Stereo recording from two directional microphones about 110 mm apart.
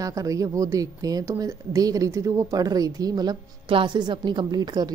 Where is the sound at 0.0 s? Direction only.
30° right (ahead or behind).